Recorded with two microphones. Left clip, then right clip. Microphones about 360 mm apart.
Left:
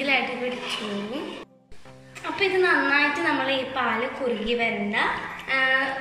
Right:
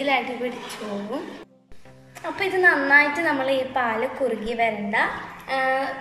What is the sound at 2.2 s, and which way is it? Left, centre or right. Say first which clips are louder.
A woman's voice: right 2 dB; centre.